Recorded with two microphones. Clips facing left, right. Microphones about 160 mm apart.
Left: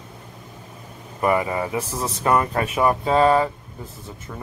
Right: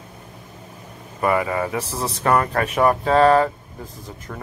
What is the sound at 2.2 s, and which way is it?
A man's voice, 10° left (ahead or behind).